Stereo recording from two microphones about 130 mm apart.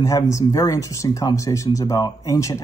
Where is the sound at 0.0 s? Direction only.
25° left (ahead or behind).